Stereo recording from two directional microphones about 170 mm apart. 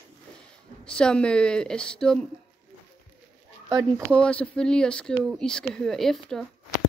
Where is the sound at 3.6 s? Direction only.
15° right (ahead or behind).